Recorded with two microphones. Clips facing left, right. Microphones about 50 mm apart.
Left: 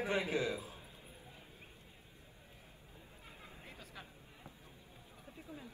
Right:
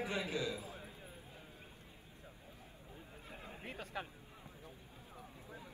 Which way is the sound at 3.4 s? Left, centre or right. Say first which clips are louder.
Right 8 dB; right.